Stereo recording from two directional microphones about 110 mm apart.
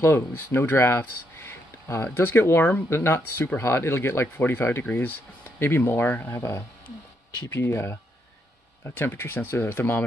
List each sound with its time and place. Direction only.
0.0 s speech: 25° left (ahead or behind)